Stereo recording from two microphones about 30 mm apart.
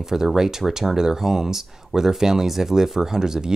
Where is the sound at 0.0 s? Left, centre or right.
Centre.